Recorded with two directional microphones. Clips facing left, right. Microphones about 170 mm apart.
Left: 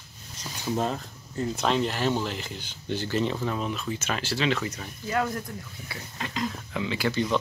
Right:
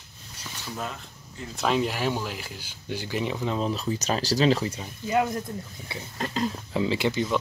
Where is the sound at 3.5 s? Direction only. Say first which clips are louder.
Right 3 dB; 35° right (ahead or behind).